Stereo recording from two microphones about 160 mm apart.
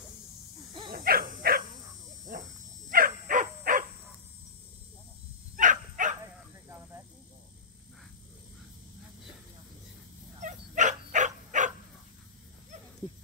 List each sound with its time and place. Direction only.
0.9 s dog: 65° right (ahead or behind)
5.6 s dog: 55° right (ahead or behind)
10.4 s dog: 50° right (ahead or behind)